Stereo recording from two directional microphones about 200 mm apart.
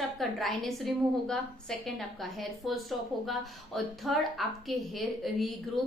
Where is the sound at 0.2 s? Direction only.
Centre (ahead or behind).